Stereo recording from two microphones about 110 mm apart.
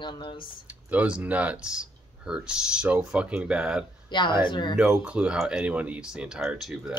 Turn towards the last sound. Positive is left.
turn(degrees=-5)  # may be behind; listen again after turning